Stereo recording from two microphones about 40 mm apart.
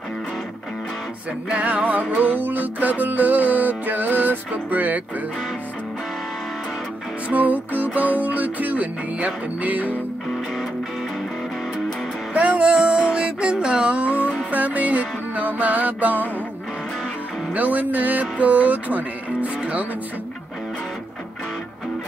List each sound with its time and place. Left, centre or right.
1.5 s music: right
7.2 s music: right
12.4 s music: right
17.6 s music: right